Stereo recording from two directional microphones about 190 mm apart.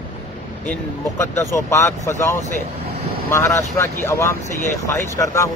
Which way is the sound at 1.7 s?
15° left (ahead or behind).